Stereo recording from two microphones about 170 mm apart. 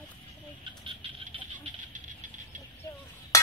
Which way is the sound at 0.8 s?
35° right (ahead or behind).